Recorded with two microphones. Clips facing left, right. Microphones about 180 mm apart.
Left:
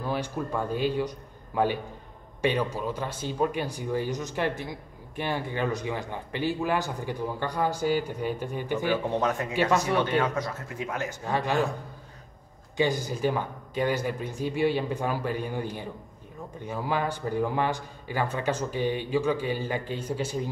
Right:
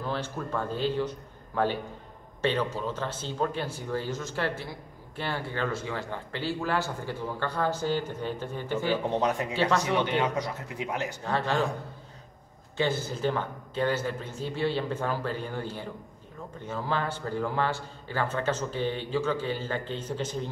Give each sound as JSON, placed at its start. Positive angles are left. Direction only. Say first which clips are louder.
{"t": 0.0, "sound": "speech", "louder": "left 2 dB", "side_deg": 15}
{"t": 9.8, "sound": "a man's voice", "louder": "left 1 dB", "side_deg": -15}
{"t": 11.2, "sound": "speech", "louder": "left 2 dB", "side_deg": 15}
{"t": 12.7, "sound": "speech", "louder": "left 2 dB", "side_deg": 15}